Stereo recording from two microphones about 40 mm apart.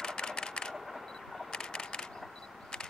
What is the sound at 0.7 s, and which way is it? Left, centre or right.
Single-lens reflex camera, centre.